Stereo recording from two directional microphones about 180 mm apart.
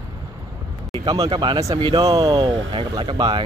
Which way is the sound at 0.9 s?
25° right (ahead or behind).